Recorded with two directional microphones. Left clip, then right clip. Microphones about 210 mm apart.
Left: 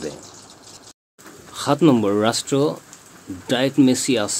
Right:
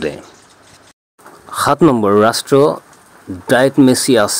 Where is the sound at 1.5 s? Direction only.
35° right (ahead or behind).